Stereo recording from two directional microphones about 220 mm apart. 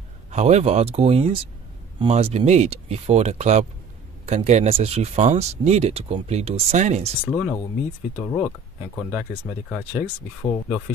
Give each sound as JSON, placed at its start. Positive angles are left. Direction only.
{"t": 0.3, "sound": "speech", "side_deg": -30}
{"t": 7.2, "sound": "speech", "side_deg": 0}
{"t": 9.1, "sound": "speech", "side_deg": -5}